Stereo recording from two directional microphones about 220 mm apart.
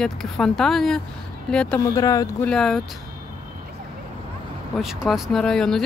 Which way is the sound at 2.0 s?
15° left (ahead or behind).